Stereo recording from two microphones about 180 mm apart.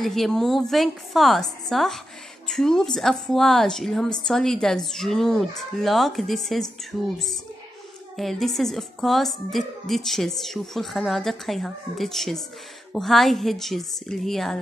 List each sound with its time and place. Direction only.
0.0 s a woman's voice: centre (ahead or behind)
8.2 s a woman's voice: centre (ahead or behind)